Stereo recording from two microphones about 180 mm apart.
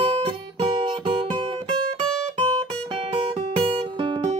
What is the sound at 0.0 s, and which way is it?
Guitar, 30° right (ahead or behind).